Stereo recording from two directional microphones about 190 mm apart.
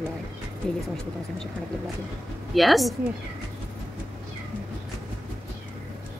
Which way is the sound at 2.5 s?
Centre (ahead or behind).